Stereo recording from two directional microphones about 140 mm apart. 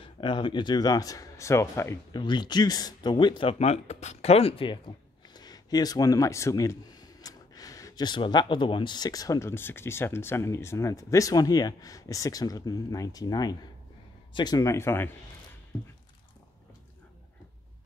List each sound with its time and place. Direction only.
0.0 s speech: 35° left (ahead or behind); by 2.0 s 20° left (ahead or behind)
2.1 s speech: 30° left (ahead or behind)
5.3 s speech: 30° left (ahead or behind)